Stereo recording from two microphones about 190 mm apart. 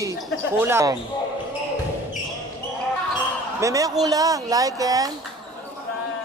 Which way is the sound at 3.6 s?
15° right (ahead or behind).